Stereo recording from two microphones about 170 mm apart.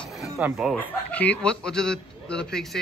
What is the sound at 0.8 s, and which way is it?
A man's voice, 10° left (ahead or behind).